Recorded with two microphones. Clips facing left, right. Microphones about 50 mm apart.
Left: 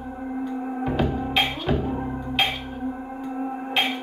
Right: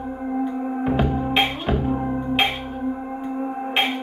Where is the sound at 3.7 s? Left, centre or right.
Right.